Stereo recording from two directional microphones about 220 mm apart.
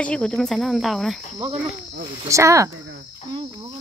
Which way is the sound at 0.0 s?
5° left (ahead or behind).